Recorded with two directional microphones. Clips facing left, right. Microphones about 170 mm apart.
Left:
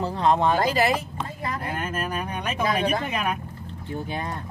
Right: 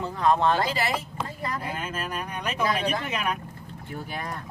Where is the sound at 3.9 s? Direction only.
25° left (ahead or behind).